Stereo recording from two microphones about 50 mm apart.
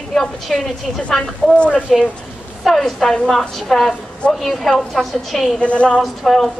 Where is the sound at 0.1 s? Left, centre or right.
Centre.